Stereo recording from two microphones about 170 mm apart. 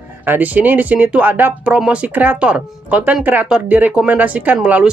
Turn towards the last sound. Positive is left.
turn(degrees=-10)  # may be behind; listen again after turning